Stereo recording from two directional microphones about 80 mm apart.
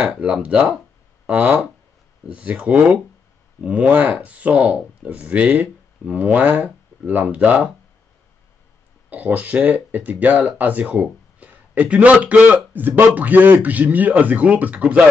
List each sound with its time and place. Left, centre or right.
0.1 s speech: centre
9.1 s speech: centre